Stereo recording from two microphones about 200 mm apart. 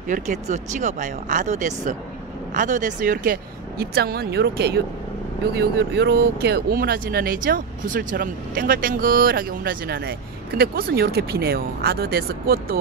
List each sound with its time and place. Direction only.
0.1 s speech: 40° right (ahead or behind)